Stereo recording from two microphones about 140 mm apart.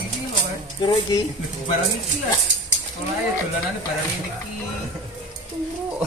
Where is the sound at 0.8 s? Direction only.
30° left (ahead or behind).